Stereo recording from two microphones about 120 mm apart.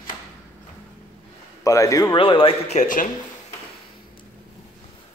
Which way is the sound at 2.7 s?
85° left.